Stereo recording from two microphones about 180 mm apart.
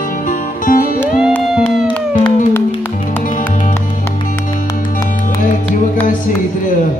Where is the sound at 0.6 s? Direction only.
50° left (ahead or behind).